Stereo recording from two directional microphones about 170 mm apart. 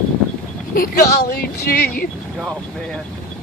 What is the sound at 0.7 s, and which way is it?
A woman's voice, 55° left (ahead or behind).